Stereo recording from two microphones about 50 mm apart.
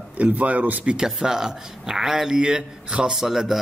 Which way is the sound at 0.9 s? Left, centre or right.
Centre.